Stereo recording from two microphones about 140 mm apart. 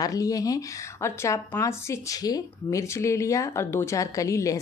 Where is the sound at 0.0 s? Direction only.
25° left (ahead or behind).